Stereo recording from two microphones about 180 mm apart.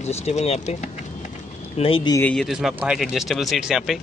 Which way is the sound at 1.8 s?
30° left (ahead or behind).